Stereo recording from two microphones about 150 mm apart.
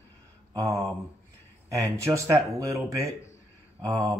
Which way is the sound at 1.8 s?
20° right (ahead or behind).